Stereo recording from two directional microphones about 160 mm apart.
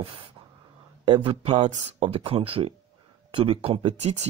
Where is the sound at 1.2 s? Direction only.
35° right (ahead or behind).